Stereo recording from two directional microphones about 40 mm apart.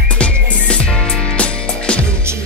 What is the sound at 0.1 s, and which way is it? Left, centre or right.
Music, left.